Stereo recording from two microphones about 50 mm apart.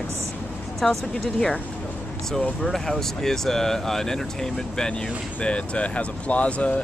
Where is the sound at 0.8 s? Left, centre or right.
Centre.